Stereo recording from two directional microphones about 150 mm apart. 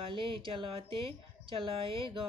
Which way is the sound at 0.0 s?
35° right (ahead or behind).